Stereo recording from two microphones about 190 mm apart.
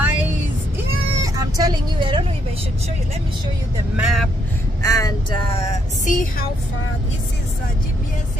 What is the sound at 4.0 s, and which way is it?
Speech, centre (ahead or behind).